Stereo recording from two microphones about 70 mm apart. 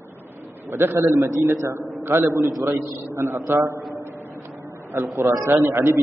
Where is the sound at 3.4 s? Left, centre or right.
Right.